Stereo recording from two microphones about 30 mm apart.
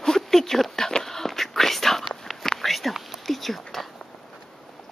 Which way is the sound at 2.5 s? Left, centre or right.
Centre.